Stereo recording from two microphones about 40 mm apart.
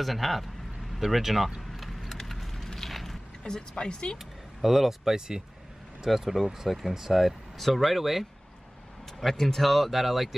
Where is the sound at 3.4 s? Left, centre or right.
Left.